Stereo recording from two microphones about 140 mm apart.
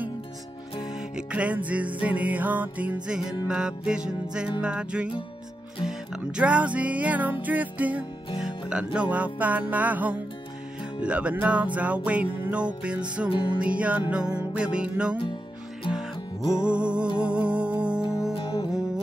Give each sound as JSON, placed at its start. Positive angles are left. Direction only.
{"t": 0.9, "sound": "music", "side_deg": -5}
{"t": 13.3, "sound": "music", "side_deg": 35}
{"t": 13.6, "sound": "music", "side_deg": -10}
{"t": 16.4, "sound": "music", "side_deg": -5}
{"t": 18.3, "sound": "music", "side_deg": 40}